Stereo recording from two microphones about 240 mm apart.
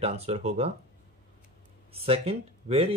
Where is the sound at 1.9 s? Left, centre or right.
Right.